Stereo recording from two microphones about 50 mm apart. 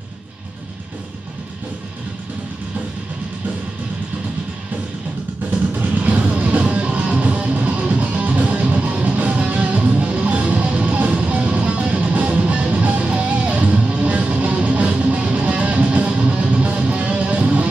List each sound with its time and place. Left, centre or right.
5.8 s music: right